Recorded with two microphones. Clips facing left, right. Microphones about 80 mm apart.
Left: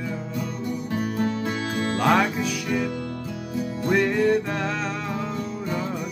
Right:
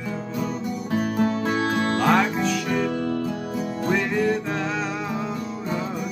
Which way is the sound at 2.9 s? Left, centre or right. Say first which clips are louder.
Right 6 dB; right.